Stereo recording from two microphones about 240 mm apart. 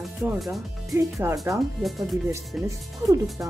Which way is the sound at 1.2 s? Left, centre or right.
Centre.